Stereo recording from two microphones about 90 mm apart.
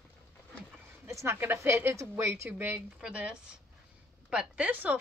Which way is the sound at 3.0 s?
10° right (ahead or behind).